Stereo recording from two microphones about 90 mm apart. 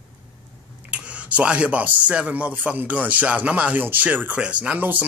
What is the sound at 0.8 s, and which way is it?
Speech, 15° right (ahead or behind).